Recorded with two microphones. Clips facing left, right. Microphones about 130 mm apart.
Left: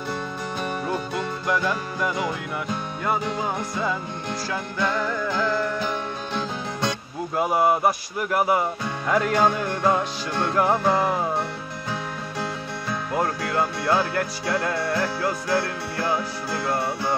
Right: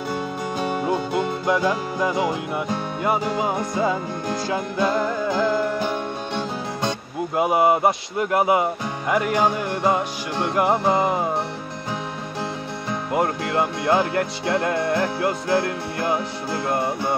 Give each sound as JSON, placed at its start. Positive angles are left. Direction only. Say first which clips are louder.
{"t": 0.7, "sound": "music", "louder": "right 5 dB", "side_deg": -15}
{"t": 7.3, "sound": "music", "louder": "right 2 dB", "side_deg": -20}
{"t": 13.1, "sound": "music", "louder": "right 3 dB", "side_deg": -20}